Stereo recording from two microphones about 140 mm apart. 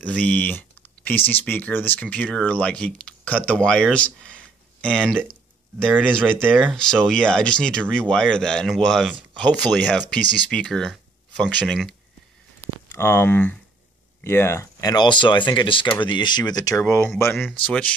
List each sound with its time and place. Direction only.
0.0 s speech: 10° left (ahead or behind)
6.7 s speech: 5° left (ahead or behind)
12.9 s speech: 15° left (ahead or behind)
16.8 s speech: 15° left (ahead or behind)